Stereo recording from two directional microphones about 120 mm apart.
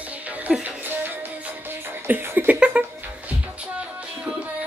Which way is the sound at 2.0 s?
20° right (ahead or behind).